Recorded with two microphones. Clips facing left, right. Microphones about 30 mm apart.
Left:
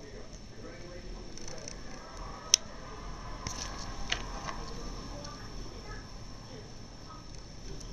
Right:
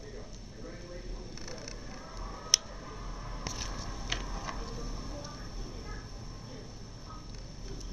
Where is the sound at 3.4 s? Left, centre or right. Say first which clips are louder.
Right 1 dB; centre.